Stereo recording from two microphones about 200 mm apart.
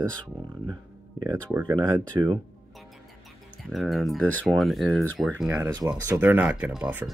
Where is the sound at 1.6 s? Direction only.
20° right (ahead or behind).